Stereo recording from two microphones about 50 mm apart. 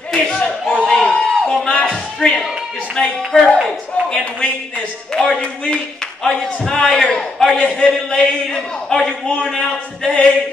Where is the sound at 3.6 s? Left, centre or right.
Centre.